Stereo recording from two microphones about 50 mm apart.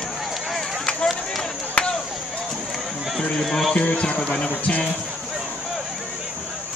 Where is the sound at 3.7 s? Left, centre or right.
Left.